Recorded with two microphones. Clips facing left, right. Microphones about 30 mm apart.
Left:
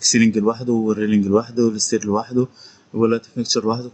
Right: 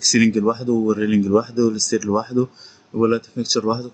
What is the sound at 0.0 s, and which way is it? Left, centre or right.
Speech, centre.